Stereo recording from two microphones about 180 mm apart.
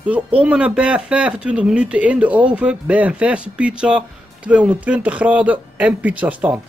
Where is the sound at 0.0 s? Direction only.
5° right (ahead or behind).